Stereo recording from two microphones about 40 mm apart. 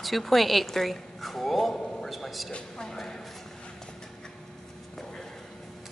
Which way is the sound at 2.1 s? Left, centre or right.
Centre.